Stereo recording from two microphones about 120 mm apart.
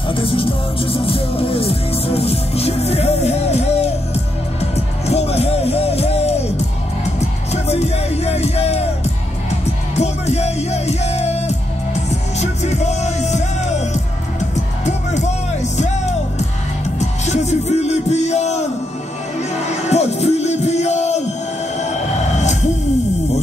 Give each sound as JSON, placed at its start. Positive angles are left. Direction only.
{"t": 0.1, "sound": "music", "side_deg": 50}
{"t": 9.9, "sound": "music", "side_deg": 65}